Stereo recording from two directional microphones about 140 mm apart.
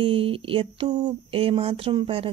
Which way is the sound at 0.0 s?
40° right (ahead or behind).